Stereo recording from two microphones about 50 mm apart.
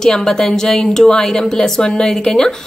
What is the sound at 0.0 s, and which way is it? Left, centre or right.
A woman's voice, centre.